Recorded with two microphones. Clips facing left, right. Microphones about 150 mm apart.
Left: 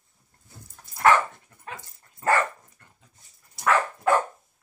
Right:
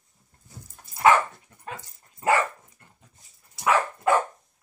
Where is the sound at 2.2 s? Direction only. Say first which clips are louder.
Right 1 dB; 15° right (ahead or behind).